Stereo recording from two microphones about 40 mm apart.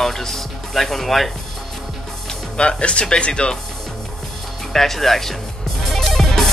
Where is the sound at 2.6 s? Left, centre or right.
Left.